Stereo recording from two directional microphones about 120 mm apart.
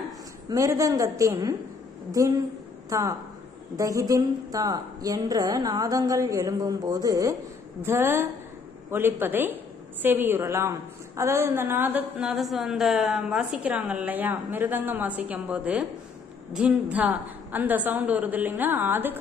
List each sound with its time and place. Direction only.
0.5 s a woman's voice: 30° right (ahead or behind)
12.2 s a woman's voice: centre (ahead or behind)